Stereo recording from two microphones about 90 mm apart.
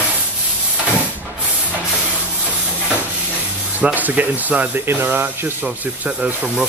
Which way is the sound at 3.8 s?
15° right (ahead or behind).